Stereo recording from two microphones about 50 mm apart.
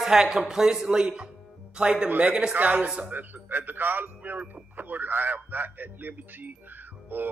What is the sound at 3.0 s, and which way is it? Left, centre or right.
A man's voice, right.